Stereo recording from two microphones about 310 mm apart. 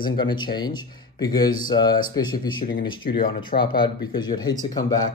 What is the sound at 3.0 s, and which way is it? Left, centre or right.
Speech, left.